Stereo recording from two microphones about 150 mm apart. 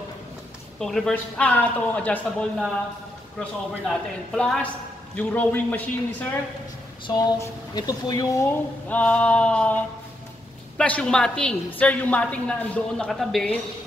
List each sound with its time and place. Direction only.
0.7 s a woman's voice: 5° left (ahead or behind)
3.3 s a woman's voice: 5° left (ahead or behind)
7.1 s speech: 25° left (ahead or behind)
8.8 s a woman's voice: 10° left (ahead or behind)
10.8 s a woman's voice: 5° left (ahead or behind)